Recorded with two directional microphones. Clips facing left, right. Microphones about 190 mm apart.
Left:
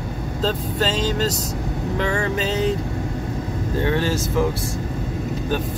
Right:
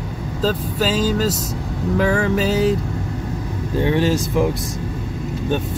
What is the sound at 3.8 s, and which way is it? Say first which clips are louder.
Vehicle: right 4 dB; 15° right (ahead or behind).